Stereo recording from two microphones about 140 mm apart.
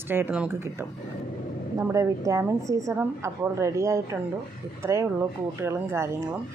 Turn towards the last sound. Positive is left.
turn(degrees=-20)  # may be behind; listen again after turning